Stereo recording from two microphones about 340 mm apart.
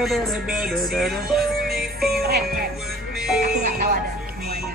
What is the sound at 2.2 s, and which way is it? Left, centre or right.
Music, right.